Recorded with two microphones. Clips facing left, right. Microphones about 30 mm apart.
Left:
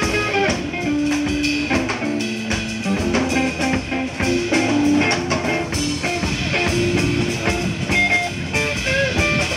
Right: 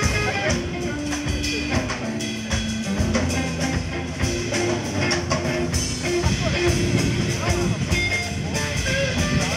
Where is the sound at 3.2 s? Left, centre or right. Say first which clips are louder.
Left 5 dB; left.